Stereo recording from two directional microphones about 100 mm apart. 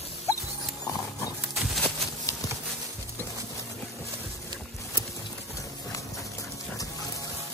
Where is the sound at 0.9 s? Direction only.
35° left (ahead or behind).